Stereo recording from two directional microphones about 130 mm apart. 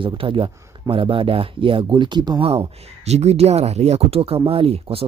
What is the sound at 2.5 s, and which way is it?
Speech, 55° right (ahead or behind).